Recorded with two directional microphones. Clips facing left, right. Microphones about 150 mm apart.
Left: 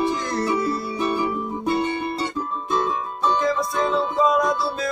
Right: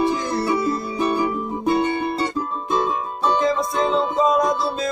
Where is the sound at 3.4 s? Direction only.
25° right (ahead or behind).